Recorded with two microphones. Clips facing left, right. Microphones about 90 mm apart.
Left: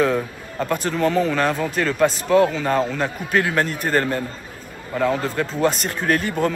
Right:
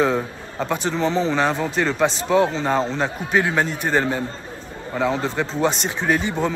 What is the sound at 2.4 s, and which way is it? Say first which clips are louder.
Speech: left 1 dB; 25° right (ahead or behind).